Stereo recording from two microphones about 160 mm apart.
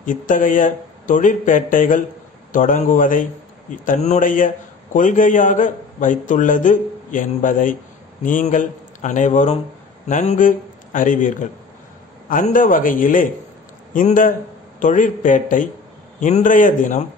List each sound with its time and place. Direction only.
0.0 s a man's voice: 55° left (ahead or behind)